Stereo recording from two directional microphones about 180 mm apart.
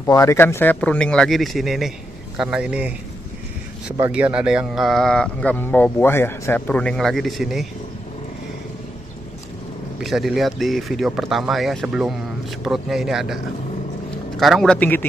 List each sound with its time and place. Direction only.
0.0 s speech: 15° left (ahead or behind); by 2.9 s 5° right (ahead or behind)
4.1 s speech: 5° right (ahead or behind)
9.9 s speech: centre (ahead or behind)